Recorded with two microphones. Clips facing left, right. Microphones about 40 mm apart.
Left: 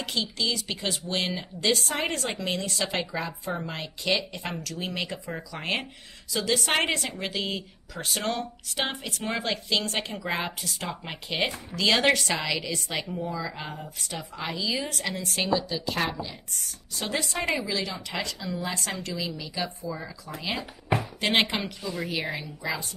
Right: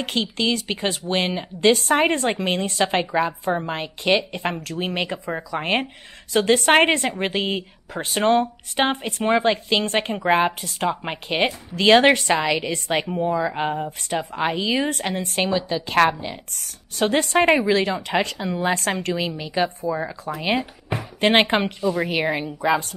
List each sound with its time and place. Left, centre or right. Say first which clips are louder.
0.0 s a woman's voice: right 6 dB; right
6.3 s a woman's voice: right 9 dB; right